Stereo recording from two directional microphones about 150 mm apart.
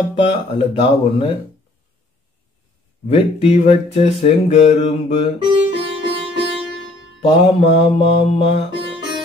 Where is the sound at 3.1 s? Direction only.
40° left (ahead or behind).